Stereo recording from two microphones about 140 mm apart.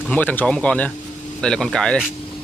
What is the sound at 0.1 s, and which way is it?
Speech, 10° left (ahead or behind).